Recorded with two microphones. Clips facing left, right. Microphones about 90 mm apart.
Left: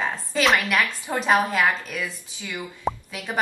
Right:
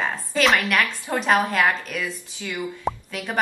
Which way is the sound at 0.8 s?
15° left (ahead or behind).